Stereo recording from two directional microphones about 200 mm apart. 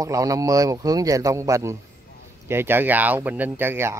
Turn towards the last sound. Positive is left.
turn(degrees=-10)  # may be behind; listen again after turning